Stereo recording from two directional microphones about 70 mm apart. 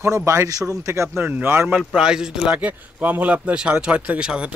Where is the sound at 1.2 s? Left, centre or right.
Right.